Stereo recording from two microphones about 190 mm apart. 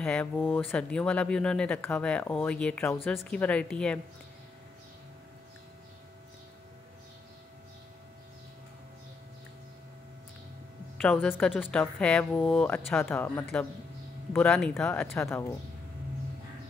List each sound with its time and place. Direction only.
0.0 s speech: 5° left (ahead or behind)
11.0 s speech: 5° left (ahead or behind)